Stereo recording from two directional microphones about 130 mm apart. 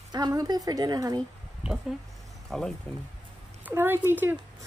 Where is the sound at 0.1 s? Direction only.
30° right (ahead or behind).